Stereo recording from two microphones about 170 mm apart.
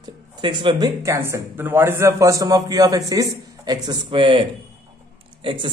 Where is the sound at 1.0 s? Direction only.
15° right (ahead or behind).